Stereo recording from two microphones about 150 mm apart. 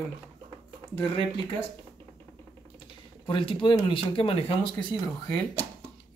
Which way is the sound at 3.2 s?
35° left (ahead or behind).